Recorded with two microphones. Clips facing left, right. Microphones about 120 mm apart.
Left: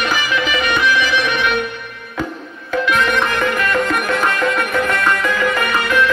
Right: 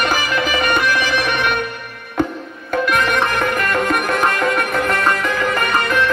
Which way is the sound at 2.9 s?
50° right (ahead or behind).